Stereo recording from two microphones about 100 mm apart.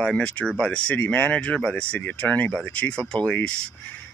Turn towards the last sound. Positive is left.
turn(degrees=10)  # may be behind; listen again after turning